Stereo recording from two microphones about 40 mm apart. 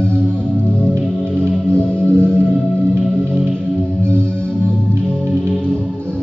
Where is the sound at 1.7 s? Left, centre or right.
Left.